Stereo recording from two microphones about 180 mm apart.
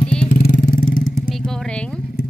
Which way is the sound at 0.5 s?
50° left (ahead or behind).